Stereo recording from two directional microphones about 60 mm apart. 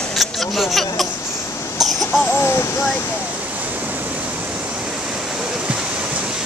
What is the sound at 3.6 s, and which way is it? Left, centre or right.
Waterfall, right.